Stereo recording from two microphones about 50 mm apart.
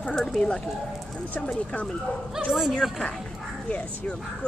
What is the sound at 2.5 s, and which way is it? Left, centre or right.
Speech, centre.